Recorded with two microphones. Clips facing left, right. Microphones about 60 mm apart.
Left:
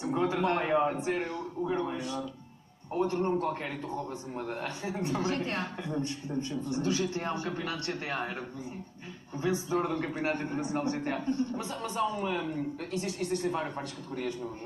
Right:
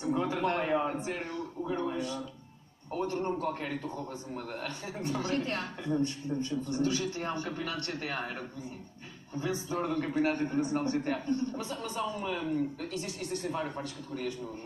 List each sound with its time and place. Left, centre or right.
0.0 s a man's voice: left